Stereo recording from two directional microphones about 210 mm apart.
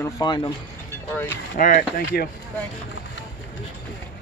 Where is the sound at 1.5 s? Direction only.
40° left (ahead or behind).